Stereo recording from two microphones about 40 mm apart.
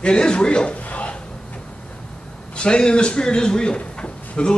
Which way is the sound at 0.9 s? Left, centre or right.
Left.